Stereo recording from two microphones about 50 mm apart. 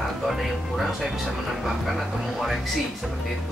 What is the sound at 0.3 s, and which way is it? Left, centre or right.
Speech, centre.